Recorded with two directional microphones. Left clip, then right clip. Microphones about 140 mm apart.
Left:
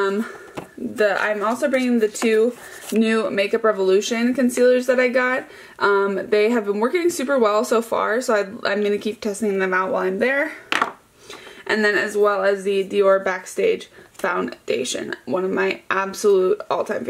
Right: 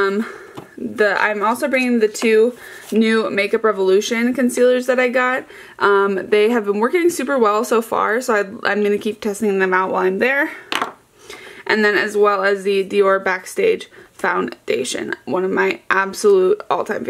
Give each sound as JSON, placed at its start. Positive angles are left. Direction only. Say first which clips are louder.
{"t": 0.9, "sound": "speech", "louder": "right 3 dB", "side_deg": -30}
{"t": 11.6, "sound": "speech", "louder": "right 3 dB", "side_deg": -25}